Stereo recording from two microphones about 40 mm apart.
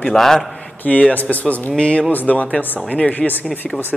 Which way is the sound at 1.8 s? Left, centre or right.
Left.